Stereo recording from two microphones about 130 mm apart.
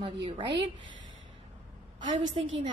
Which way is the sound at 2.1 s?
45° right (ahead or behind).